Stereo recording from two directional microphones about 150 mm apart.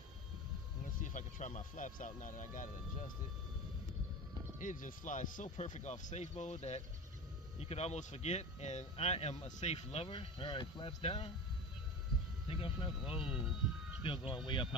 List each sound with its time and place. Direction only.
1.0 s speech: 55° left (ahead or behind)
4.6 s speech: 60° left (ahead or behind); by 11.2 s 45° left (ahead or behind)
12.4 s speech: 35° left (ahead or behind)